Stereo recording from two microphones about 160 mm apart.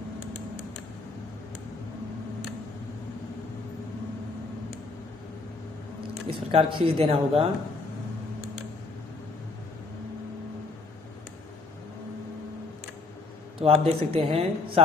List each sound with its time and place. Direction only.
6.2 s speech: 35° right (ahead or behind)
13.6 s speech: 35° right (ahead or behind)